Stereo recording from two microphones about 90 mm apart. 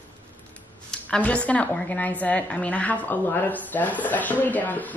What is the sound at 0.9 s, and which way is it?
A woman's voice, 15° left (ahead or behind).